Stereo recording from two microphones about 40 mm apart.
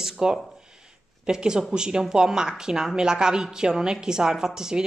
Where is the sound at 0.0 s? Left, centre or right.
Centre.